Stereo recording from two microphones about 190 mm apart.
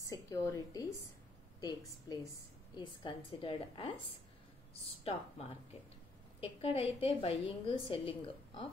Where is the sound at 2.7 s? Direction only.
25° left (ahead or behind).